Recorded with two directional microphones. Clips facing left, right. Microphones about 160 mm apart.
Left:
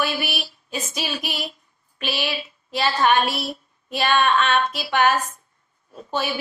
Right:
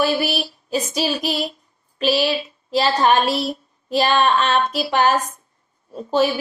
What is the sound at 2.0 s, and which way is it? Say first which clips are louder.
Child singing: right 8 dB; 35° right (ahead or behind).